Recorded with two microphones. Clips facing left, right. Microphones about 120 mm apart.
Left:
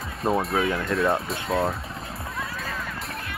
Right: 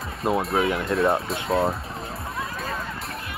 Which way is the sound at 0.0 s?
Centre (ahead or behind).